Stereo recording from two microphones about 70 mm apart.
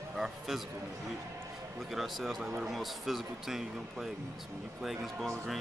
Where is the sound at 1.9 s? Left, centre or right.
Centre.